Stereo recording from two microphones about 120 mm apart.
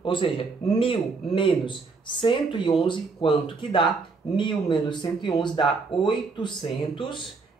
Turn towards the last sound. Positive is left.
turn(degrees=40)  # may be behind; listen again after turning